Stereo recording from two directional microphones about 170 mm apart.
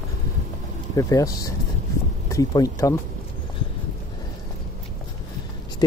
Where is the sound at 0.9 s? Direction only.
20° left (ahead or behind).